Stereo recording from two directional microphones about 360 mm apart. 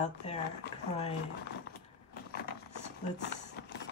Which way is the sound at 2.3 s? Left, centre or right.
Left.